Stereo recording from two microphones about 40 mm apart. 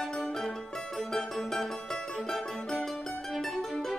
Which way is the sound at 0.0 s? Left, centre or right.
Centre.